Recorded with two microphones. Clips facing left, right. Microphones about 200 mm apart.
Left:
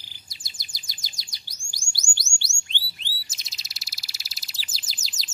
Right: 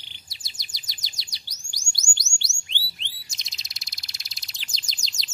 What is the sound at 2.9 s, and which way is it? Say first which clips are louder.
Bird: left 1 dB; 5° left (ahead or behind).